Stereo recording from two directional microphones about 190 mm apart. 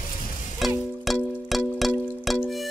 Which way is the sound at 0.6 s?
Centre (ahead or behind).